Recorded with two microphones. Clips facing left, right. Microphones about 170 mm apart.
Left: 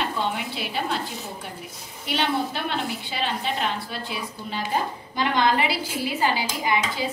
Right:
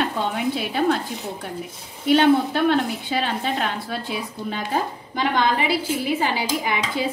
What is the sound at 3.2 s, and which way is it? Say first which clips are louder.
Speech: right 2 dB; 50° right (ahead or behind).